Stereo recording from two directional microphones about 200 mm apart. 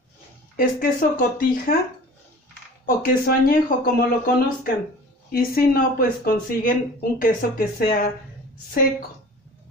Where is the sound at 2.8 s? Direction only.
45° left (ahead or behind).